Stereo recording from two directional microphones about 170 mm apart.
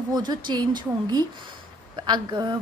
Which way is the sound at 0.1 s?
25° right (ahead or behind).